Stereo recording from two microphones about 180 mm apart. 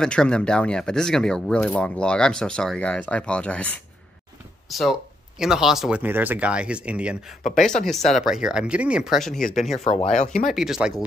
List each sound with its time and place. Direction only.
0.0 s speech: 5° left (ahead or behind)
9.6 s speech: 40° left (ahead or behind)
10.5 s speech: centre (ahead or behind)